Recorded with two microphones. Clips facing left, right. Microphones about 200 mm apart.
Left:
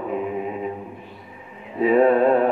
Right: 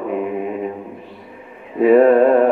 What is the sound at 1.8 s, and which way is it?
Mantra, 55° right (ahead or behind).